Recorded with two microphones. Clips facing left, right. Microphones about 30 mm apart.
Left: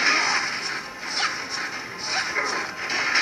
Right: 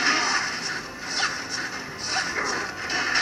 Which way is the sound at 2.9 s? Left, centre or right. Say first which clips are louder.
Left 2 dB; centre.